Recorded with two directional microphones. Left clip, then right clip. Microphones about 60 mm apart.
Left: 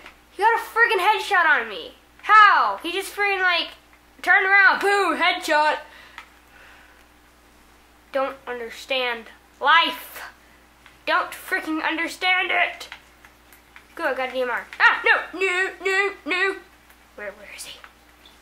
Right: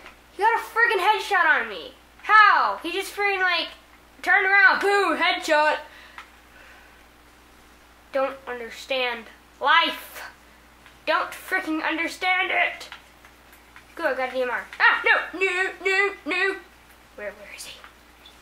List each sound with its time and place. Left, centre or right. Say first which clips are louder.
0.4 s a sound: left 2 dB; left
1.7 s speech: left 1 dB; left
8.1 s a woman's voice: even; left
13.9 s speech: left 1 dB; left